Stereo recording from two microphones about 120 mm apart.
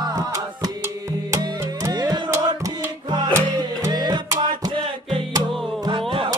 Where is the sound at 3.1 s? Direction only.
40° right (ahead or behind).